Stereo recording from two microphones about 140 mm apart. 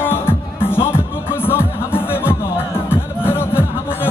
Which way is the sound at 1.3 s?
15° left (ahead or behind).